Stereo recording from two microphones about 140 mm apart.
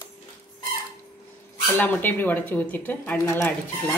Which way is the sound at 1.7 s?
15° left (ahead or behind).